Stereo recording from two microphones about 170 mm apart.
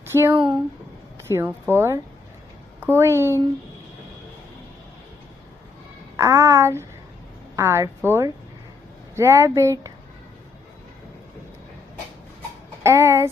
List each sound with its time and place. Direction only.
0.0 s speech: 15° right (ahead or behind)
6.1 s speech: 15° right (ahead or behind)
12.8 s a sound: 15° right (ahead or behind)